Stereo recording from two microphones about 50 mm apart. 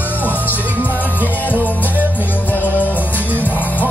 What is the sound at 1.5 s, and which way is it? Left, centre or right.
Music, left.